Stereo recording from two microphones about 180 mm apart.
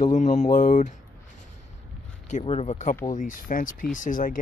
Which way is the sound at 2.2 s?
40° left (ahead or behind).